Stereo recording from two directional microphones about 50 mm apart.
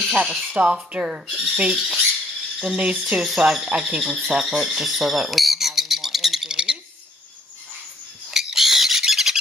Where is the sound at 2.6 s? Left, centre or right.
Centre.